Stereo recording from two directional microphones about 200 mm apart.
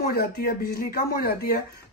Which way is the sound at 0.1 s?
50° left (ahead or behind).